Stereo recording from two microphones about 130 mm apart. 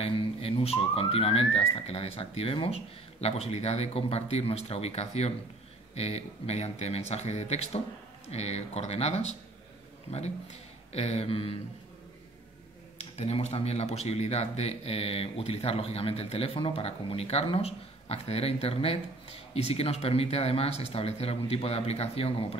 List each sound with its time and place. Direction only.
0.0 s speech: 50° left (ahead or behind)
12.9 s speech: 50° left (ahead or behind)